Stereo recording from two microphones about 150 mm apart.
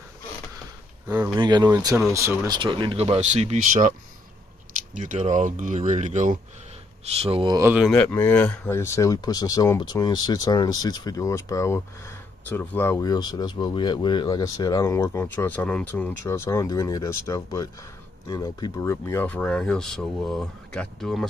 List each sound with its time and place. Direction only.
1.0 s speech: 10° right (ahead or behind)
1.3 s speech: 30° right (ahead or behind); by 3.9 s 55° right (ahead or behind)
4.9 s speech: 55° right (ahead or behind)
7.1 s speech: 40° right (ahead or behind)
7.9 s speech: 15° left (ahead or behind)
13.0 s speech: 25° left (ahead or behind); by 21.3 s centre (ahead or behind)